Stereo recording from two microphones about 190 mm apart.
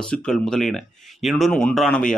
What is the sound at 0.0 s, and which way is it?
Speech, 5° left (ahead or behind).